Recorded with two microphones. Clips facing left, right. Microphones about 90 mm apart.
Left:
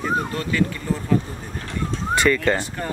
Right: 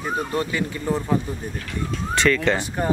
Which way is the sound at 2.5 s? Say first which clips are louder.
Right 3 dB; 20° right (ahead or behind).